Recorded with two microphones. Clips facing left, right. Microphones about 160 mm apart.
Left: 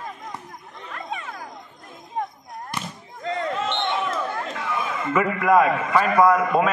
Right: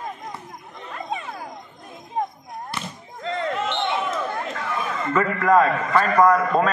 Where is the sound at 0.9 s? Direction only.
20° right (ahead or behind).